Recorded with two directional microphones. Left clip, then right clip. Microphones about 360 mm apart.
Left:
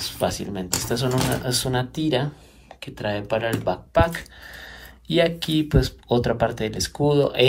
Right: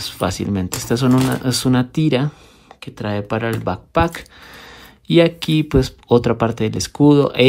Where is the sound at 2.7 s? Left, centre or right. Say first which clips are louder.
Right 2 dB; centre.